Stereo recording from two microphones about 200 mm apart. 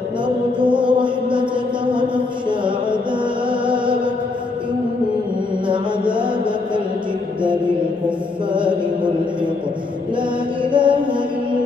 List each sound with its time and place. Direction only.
0.6 s music: 25° right (ahead or behind)
5.7 s a sound: 25° right (ahead or behind)
10.6 s mantra: 25° right (ahead or behind)